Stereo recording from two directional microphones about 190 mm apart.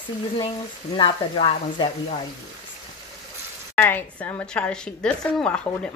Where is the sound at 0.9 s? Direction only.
30° left (ahead or behind).